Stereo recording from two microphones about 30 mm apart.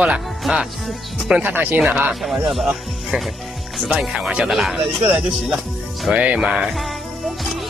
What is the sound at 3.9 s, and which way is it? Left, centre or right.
Speech, right.